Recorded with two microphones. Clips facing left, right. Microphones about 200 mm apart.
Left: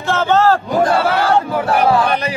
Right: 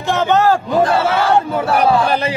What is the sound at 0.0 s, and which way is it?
A man's voice, 15° right (ahead or behind).